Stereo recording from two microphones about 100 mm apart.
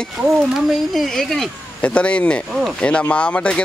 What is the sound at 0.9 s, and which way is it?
Speech, 5° left (ahead or behind).